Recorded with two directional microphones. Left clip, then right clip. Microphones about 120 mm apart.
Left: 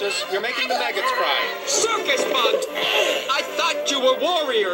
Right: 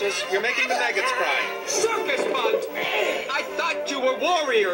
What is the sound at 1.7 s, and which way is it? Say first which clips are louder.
Speech: left 2 dB; 35° left (ahead or behind).